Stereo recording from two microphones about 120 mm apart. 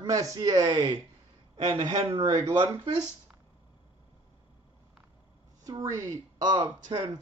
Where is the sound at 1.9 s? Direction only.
50° right (ahead or behind).